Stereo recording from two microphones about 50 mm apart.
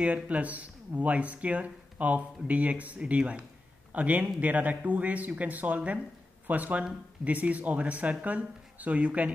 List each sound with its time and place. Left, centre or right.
0.0 s speech: right